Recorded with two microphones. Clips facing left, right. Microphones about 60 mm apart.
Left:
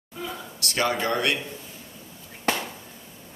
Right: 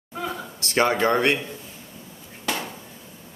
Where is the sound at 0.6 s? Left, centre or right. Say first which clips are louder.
Right 4 dB; right.